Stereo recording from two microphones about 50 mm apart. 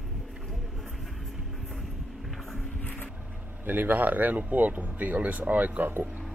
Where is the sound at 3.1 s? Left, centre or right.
Right.